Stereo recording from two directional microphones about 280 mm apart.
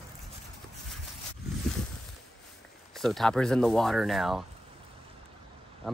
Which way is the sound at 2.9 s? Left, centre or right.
Centre.